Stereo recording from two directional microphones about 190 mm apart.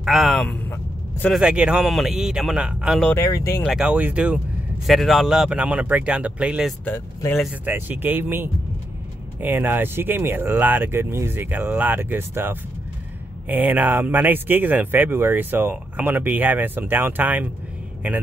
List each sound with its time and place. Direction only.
0.0 s speech: centre (ahead or behind)
3.2 s speech: 15° left (ahead or behind)
3.6 s speech: 5° right (ahead or behind)
6.8 s speech: 10° left (ahead or behind)
7.3 s speech: 10° right (ahead or behind)